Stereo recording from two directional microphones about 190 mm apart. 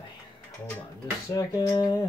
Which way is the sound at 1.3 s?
20° left (ahead or behind).